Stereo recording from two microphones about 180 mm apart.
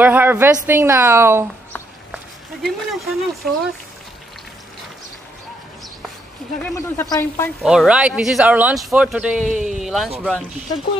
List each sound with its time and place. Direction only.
0.0 s speech: 10° right (ahead or behind)
2.6 s speech: centre (ahead or behind)
6.7 s speech: 20° left (ahead or behind)
7.6 s speech: 5° right (ahead or behind)
9.4 s a man's voice: 45° right (ahead or behind)
9.8 s speech: centre (ahead or behind)